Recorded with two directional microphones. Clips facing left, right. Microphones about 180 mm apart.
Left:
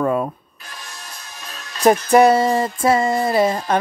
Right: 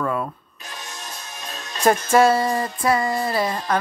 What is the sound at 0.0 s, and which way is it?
Music, 30° left (ahead or behind).